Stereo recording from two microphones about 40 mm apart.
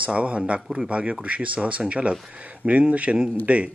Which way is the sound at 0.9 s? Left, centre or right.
Right.